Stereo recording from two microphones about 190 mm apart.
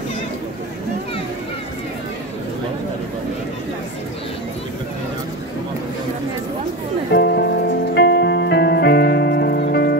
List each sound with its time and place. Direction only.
7.1 s music: 60° left (ahead or behind)